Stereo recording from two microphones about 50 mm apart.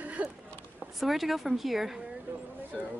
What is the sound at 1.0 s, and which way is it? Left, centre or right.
Speech, centre.